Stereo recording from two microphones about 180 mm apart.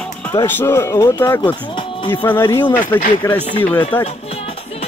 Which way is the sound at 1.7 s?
25° left (ahead or behind).